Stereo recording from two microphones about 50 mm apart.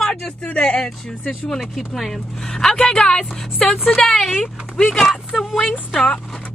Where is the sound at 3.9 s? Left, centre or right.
Centre.